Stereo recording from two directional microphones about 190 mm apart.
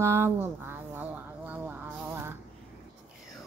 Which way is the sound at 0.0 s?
10° right (ahead or behind).